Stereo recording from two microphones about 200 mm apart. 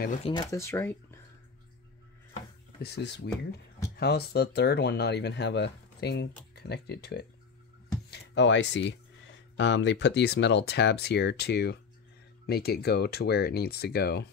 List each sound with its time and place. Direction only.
0.2 s speech: 20° left (ahead or behind)
2.8 s speech: 55° left (ahead or behind)